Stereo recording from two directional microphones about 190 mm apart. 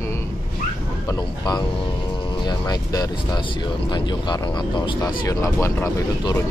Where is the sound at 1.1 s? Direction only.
20° left (ahead or behind).